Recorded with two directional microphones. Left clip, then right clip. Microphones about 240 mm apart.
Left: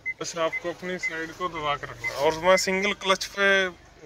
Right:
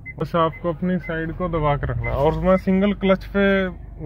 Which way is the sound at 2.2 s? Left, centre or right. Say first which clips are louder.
Right 2 dB; centre.